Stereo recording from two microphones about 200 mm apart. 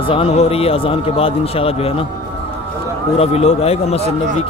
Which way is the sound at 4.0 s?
30° right (ahead or behind).